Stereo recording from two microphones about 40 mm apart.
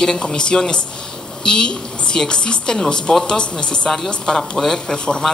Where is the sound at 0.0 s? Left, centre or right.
Centre.